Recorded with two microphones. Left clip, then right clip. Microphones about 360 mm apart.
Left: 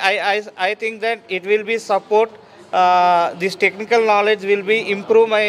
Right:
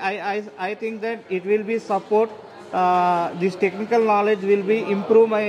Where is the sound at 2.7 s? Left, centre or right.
Left.